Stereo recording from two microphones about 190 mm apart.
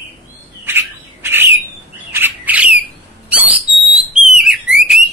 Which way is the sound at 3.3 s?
5° right (ahead or behind).